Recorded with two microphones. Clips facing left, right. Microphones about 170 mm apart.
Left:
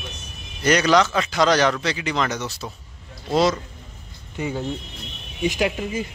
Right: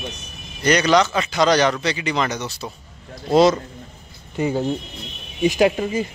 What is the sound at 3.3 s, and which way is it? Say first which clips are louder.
Speech: right 5 dB; 20° right (ahead or behind).